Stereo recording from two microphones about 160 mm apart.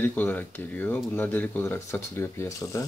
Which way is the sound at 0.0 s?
10° left (ahead or behind).